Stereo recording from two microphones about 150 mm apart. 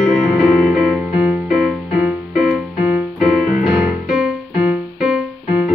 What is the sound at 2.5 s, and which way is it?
Keyboard, centre (ahead or behind).